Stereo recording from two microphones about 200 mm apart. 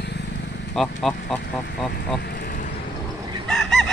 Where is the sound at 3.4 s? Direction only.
5° left (ahead or behind).